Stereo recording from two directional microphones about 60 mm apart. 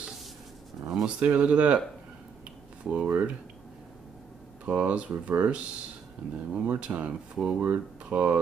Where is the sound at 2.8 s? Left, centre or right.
Right.